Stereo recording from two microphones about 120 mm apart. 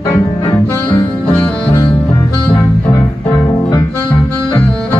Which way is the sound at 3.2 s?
45° left (ahead or behind).